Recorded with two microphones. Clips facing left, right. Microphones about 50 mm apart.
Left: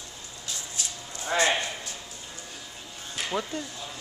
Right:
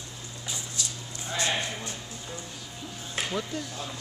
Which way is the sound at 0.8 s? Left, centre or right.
Left.